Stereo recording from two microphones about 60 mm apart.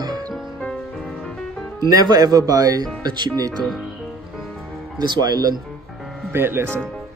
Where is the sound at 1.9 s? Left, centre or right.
Right.